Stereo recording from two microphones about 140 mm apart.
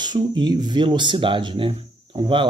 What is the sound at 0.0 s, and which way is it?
Speech, 30° right (ahead or behind).